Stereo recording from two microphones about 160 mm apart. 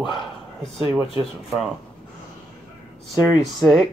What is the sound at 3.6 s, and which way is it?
Speech, centre (ahead or behind).